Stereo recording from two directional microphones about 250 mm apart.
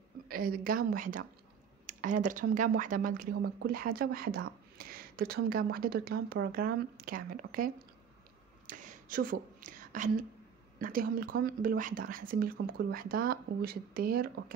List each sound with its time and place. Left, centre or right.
0.3 s speech: right
8.6 s whispering: right
10.8 s speech: right